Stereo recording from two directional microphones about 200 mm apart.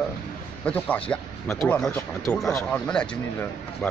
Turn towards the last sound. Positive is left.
turn(degrees=5)  # may be behind; listen again after turning